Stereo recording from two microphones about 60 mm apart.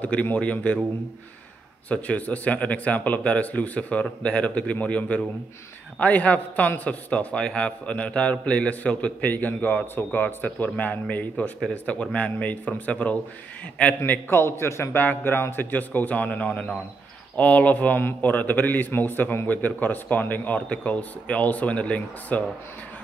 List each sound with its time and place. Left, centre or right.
0.0 s a man's voice: left
1.9 s a man's voice: left
15.0 s a man's voice: left